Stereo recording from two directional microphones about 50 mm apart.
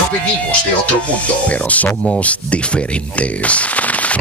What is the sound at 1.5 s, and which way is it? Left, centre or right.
Speech, left.